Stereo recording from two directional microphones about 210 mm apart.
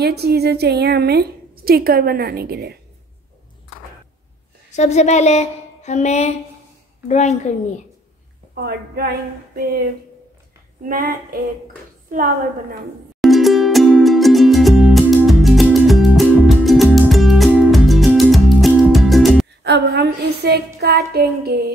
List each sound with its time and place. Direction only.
0.0 s a woman's voice: 50° right (ahead or behind)
4.6 s a woman's voice: 35° left (ahead or behind)
8.5 s a woman's voice: 50° right (ahead or behind)
10.9 s speech: 45° right (ahead or behind)
13.2 s music: centre (ahead or behind)
19.6 s a woman's voice: 55° right (ahead or behind)